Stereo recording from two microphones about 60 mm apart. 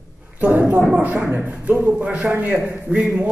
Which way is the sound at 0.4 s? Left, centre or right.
Right.